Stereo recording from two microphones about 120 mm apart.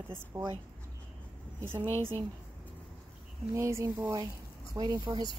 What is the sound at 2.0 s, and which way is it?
Speech, 50° right (ahead or behind).